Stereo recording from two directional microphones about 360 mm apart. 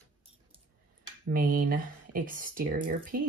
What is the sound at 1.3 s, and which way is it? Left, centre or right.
Speech, right.